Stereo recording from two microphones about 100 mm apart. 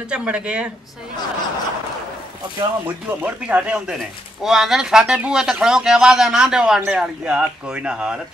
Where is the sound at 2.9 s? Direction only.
20° right (ahead or behind).